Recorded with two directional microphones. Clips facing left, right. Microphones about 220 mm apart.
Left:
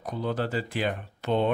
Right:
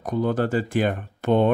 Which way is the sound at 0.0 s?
50° right (ahead or behind).